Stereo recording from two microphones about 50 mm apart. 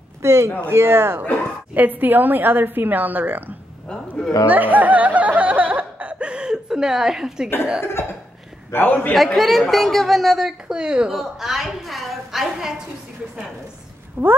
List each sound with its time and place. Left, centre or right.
0.2 s speech: right
0.7 s speech: right
1.7 s a woman's voice: right
4.5 s snicker: right; by 7.4 s centre
7.8 s cough: left
8.7 s a man's voice: left
9.1 s a woman's voice: centre
10.7 s speech: centre
11.1 s a woman's voice: centre
14.2 s a woman's voice: right